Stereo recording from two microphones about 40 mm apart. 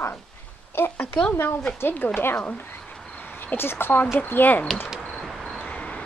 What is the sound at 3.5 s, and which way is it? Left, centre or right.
Speech, left.